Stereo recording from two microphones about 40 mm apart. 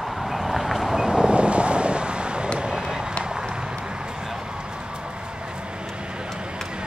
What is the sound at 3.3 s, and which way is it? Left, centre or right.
Run, right.